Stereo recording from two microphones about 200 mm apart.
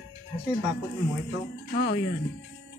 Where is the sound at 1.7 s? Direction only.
50° left (ahead or behind).